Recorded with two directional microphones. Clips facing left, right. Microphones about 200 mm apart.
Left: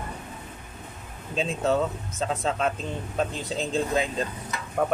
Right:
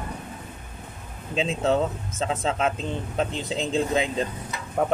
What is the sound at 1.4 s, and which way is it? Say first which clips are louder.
Speech: right 2 dB; 20° right (ahead or behind).